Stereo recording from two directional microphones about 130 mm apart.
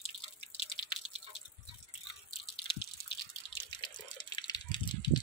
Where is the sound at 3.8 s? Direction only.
35° left (ahead or behind).